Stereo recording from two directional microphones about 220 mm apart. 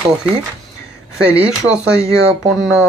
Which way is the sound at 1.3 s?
5° right (ahead or behind).